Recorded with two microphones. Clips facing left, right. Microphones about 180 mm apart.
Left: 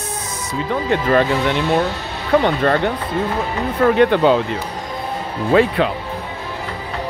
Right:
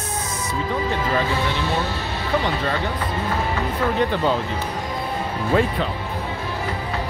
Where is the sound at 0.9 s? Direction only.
60° left (ahead or behind).